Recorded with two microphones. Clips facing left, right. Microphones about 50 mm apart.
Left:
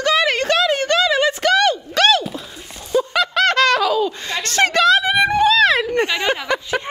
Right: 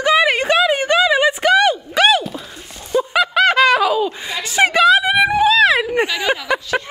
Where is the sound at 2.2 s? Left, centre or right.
Centre.